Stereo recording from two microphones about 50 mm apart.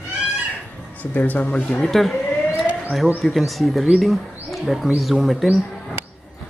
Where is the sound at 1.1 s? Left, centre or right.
Left.